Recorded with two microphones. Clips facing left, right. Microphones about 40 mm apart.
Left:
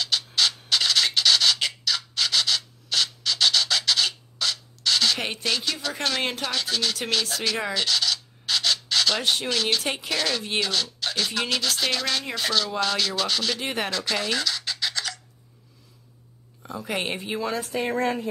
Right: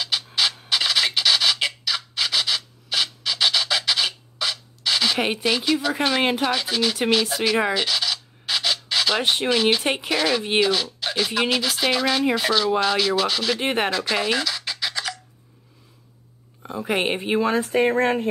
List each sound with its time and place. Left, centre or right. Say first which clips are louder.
0.0 s scratch: right 1 dB; centre
7.7 s a sound: right 2 dB; centre
9.2 s speech: right 5 dB; right
13.6 s speech: right 6 dB; right
13.8 s scratch: right 4 dB; centre
16.6 s speech: right 6 dB; right
17.7 s speech: right 5 dB; right